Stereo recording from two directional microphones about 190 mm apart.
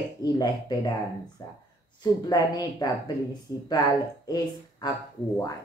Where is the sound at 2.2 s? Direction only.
20° left (ahead or behind).